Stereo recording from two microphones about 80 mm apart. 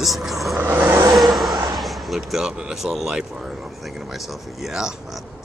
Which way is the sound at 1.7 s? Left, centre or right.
Centre.